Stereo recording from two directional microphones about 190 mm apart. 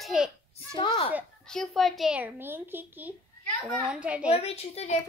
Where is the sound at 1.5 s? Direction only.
Centre (ahead or behind).